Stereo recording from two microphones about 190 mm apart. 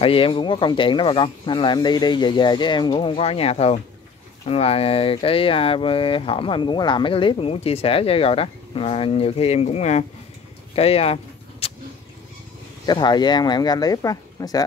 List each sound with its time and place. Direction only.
0.0 s speech: 30° left (ahead or behind)
11.6 s vehicle: 30° left (ahead or behind)
12.8 s speech: 20° left (ahead or behind)